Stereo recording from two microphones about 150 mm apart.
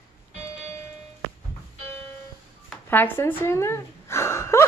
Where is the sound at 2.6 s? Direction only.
15° left (ahead or behind).